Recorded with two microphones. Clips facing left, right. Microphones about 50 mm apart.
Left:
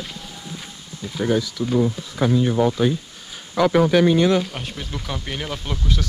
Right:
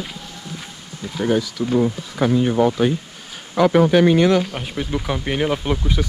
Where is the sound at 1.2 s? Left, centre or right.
Right.